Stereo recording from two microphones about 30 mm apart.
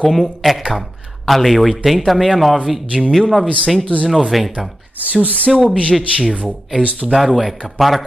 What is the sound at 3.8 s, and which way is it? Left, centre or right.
Speech, left.